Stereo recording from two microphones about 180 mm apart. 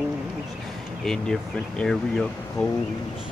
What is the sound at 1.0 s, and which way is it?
Speech, 5° left (ahead or behind).